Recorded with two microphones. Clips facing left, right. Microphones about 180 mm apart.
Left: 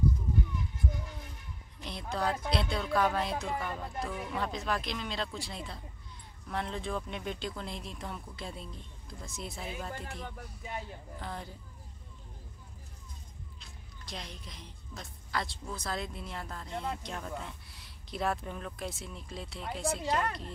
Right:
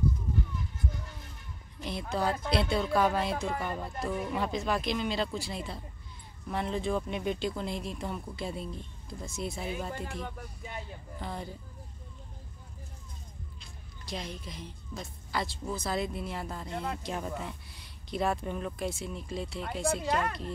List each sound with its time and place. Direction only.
1.8 s speech: 5° right (ahead or behind)
13.6 s a sound: centre (ahead or behind)
15.7 s speech: 5° right (ahead or behind)